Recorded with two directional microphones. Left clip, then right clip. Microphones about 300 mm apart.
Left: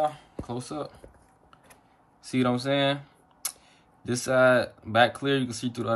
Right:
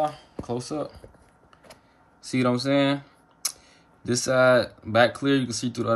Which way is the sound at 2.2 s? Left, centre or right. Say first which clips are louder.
Right 2 dB; centre.